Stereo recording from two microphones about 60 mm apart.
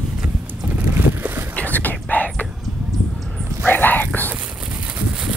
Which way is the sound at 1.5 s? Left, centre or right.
Left.